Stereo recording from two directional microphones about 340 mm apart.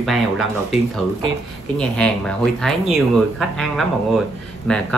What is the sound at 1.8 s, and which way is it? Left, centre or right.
Speech, centre.